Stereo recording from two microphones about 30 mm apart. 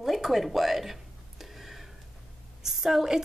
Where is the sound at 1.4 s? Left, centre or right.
Centre.